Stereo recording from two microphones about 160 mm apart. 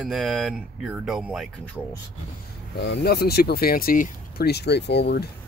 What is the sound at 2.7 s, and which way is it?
Speech, 85° left.